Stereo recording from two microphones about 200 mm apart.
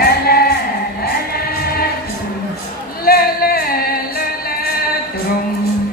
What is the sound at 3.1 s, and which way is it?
Singing, 50° left (ahead or behind).